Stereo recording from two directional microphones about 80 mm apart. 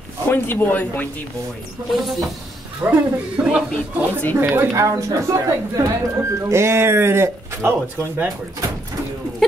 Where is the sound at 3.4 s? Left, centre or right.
Centre.